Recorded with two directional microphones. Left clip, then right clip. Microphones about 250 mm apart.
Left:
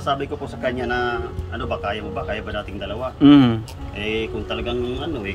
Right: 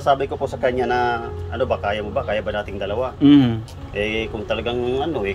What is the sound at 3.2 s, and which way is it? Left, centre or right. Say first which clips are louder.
Speech: left 2 dB; centre.